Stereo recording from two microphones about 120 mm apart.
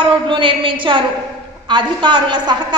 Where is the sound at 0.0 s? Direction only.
45° right (ahead or behind).